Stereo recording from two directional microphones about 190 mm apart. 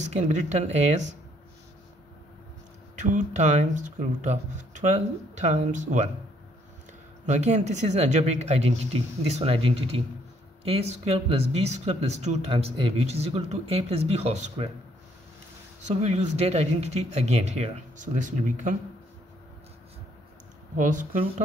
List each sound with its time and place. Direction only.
0.1 s speech: 35° right (ahead or behind)
3.0 s speech: 40° right (ahead or behind)
7.2 s speech: 35° right (ahead or behind)
15.9 s speech: 35° right (ahead or behind)
20.7 s speech: 40° right (ahead or behind)